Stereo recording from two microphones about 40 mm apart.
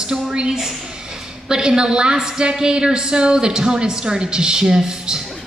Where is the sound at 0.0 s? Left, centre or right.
Right.